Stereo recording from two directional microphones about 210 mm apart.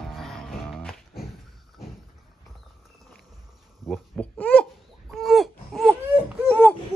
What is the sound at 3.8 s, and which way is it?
Babbling, 5° left (ahead or behind).